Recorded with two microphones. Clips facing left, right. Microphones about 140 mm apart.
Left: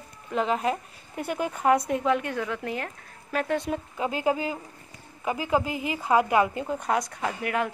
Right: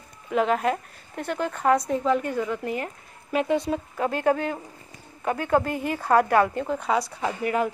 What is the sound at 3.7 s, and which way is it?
Speech, 5° left (ahead or behind).